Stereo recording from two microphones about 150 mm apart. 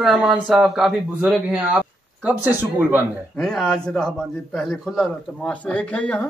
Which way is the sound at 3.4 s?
5° left (ahead or behind).